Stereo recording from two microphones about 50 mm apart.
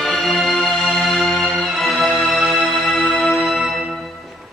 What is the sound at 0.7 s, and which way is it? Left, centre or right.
Music, centre.